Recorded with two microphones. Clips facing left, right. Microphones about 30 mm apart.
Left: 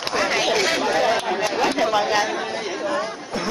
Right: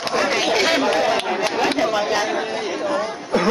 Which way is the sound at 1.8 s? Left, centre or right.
Centre.